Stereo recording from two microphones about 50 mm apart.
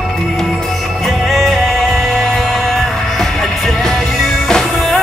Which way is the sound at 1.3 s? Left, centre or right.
Centre.